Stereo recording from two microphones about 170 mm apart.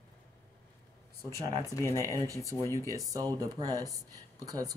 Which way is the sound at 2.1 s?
20° right (ahead or behind).